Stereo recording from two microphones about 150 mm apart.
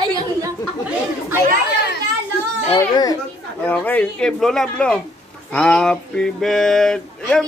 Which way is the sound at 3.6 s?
10° left (ahead or behind).